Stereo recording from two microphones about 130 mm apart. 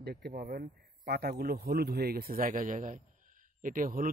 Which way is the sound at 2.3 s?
90° right.